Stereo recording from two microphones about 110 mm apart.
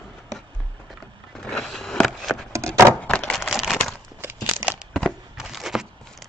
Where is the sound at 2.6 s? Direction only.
30° right (ahead or behind).